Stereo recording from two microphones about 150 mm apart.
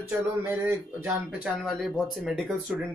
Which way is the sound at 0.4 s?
10° right (ahead or behind).